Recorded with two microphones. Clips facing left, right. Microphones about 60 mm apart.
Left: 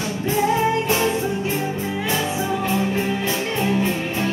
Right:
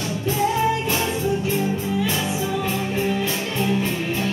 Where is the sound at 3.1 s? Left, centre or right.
Centre.